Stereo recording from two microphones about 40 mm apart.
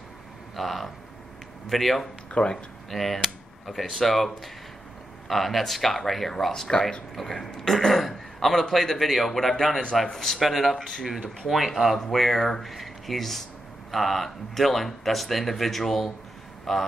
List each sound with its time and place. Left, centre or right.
0.6 s speech: centre
2.4 s speech: left
2.9 s a man's voice: centre